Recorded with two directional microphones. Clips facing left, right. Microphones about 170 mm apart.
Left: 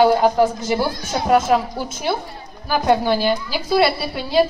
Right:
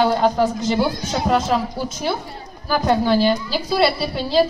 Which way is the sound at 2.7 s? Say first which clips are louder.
Even; 10° left (ahead or behind).